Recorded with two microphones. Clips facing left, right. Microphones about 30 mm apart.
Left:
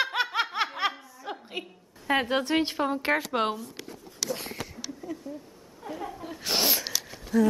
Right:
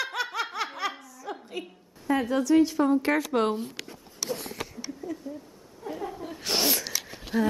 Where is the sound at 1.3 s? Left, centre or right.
Left.